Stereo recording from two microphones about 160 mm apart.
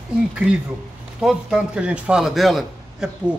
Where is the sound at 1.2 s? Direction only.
5° right (ahead or behind).